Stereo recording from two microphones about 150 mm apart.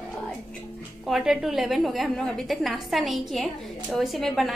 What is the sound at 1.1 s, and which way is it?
A woman's voice, centre (ahead or behind).